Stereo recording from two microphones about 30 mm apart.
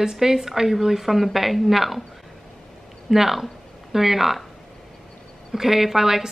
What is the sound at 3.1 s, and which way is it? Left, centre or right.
A woman's voice, centre.